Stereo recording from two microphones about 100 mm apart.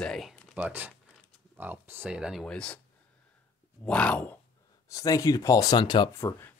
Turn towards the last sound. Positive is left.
turn(degrees=25)  # may be behind; listen again after turning